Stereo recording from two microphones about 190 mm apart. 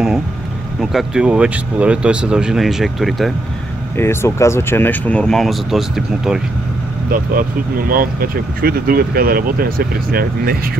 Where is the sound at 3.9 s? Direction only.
15° left (ahead or behind); by 6.4 s centre (ahead or behind).